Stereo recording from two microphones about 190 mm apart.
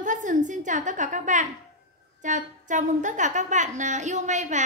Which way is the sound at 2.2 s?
40° right (ahead or behind).